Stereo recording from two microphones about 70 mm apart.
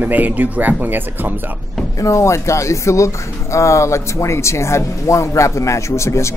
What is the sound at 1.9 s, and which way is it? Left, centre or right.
Speech, left.